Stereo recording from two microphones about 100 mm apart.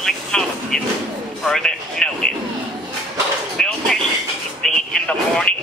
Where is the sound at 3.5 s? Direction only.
5° left (ahead or behind).